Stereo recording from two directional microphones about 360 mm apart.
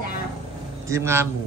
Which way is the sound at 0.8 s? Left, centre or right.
Centre.